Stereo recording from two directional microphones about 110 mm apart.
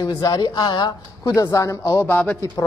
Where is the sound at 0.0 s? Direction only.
35° left (ahead or behind).